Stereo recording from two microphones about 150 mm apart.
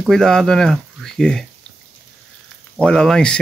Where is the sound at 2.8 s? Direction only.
5° left (ahead or behind).